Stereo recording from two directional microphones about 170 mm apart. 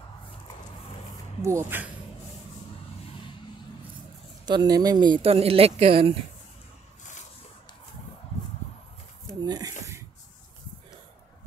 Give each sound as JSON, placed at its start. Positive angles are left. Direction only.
{"t": 1.4, "sound": "speech", "side_deg": -15}
{"t": 4.5, "sound": "speech", "side_deg": -25}
{"t": 9.3, "sound": "a sound", "side_deg": -20}